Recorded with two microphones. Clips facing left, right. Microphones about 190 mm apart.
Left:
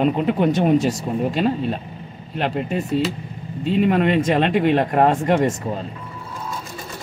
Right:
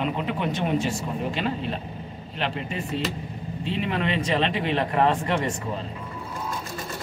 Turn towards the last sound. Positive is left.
turn(degrees=45)  # may be behind; listen again after turning